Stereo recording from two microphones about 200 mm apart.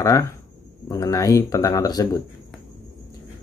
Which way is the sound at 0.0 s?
15° left (ahead or behind).